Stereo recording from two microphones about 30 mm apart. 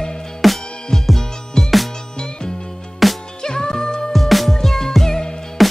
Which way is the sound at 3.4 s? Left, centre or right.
Left.